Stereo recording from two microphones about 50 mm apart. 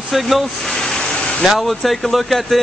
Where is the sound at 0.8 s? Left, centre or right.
Centre.